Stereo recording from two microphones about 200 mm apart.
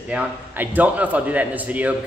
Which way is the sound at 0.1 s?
10° right (ahead or behind).